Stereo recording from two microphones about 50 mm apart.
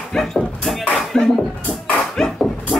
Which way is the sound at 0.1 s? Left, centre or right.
Centre.